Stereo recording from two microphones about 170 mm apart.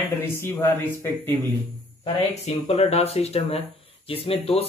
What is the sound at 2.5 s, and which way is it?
Speech, 40° left (ahead or behind).